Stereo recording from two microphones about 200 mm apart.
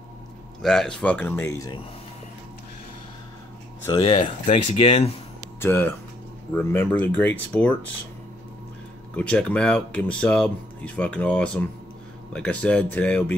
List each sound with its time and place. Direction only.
0.6 s speech: centre (ahead or behind)
4.0 s speech: 30° left (ahead or behind)
5.6 s speech: 10° left (ahead or behind)
9.1 s speech: 5° left (ahead or behind)